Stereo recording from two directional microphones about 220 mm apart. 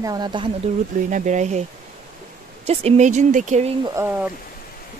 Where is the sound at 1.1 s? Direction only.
35° right (ahead or behind).